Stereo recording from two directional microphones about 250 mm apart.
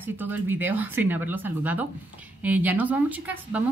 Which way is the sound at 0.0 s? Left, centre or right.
Centre.